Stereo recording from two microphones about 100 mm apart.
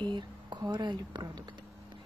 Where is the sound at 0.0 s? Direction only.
50° right (ahead or behind).